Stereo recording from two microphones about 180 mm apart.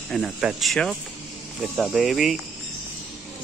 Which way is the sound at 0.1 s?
Centre (ahead or behind).